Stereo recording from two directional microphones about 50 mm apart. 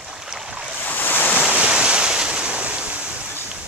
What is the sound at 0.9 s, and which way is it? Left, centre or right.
Waves, left.